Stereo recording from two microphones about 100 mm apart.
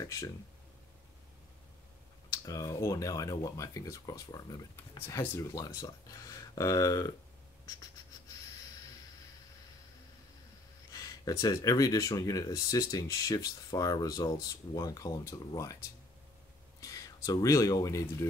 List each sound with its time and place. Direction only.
0.0 s speech: 30° left (ahead or behind)
2.3 s speech: 35° left (ahead or behind)
5.0 s speech: 30° left (ahead or behind)
10.9 s speech: 35° left (ahead or behind)
16.8 s speech: 35° left (ahead or behind)